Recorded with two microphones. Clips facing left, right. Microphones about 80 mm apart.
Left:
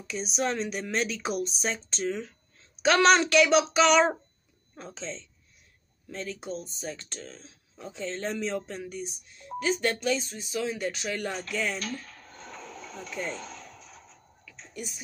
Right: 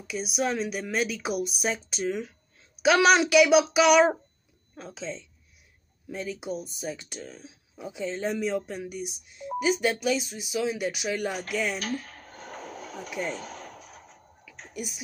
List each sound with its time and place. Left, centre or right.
0.0 s speech: centre
12.0 s a sound: right
14.7 s speech: centre